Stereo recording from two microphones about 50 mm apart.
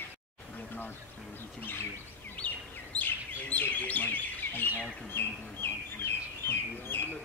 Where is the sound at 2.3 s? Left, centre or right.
Left.